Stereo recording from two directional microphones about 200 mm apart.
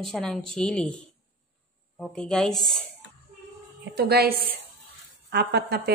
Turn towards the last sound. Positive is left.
turn(degrees=-55)  # may be behind; listen again after turning